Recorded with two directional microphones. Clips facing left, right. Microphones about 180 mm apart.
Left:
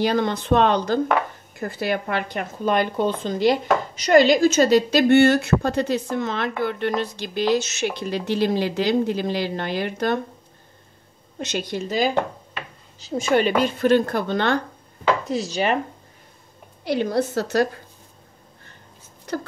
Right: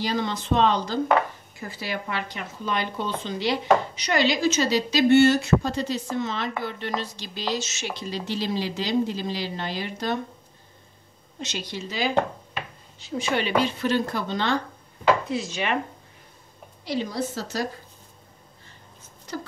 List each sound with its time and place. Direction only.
0.0 s speech: 55° left (ahead or behind)
11.3 s speech: 55° left (ahead or behind)
15.2 s dishes: 40° left (ahead or behind)
16.8 s speech: 60° left (ahead or behind)